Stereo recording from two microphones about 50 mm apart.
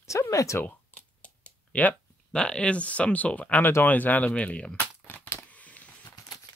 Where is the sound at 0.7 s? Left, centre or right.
Left.